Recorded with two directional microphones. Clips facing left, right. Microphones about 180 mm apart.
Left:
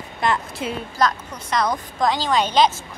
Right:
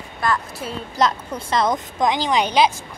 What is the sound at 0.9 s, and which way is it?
A woman's voice, 25° right (ahead or behind).